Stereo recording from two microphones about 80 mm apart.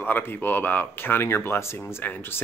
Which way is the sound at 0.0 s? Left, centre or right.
Left.